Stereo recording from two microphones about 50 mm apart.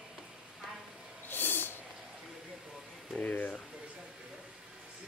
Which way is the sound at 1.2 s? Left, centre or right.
Left.